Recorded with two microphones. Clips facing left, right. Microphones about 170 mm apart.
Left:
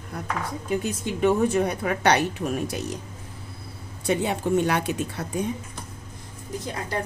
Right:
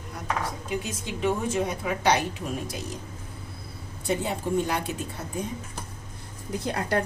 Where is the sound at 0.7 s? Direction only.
55° left (ahead or behind).